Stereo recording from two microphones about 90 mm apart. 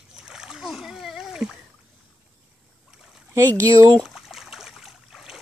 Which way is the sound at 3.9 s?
5° right (ahead or behind).